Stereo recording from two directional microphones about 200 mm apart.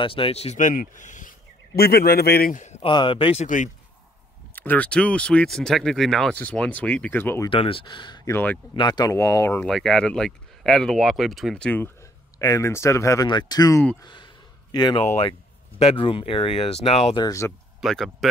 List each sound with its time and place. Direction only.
0.0 s a man's voice: 25° left (ahead or behind)
1.8 s a man's voice: 50° left (ahead or behind); by 3.4 s 25° left (ahead or behind)
3.4 s a man's voice: 40° left (ahead or behind)
4.6 s speech: 10° left (ahead or behind)
7.4 s speech: 25° left (ahead or behind)
14.0 s a sound: 25° left (ahead or behind)
15.8 s speech: 25° left (ahead or behind)
17.7 s speech: centre (ahead or behind)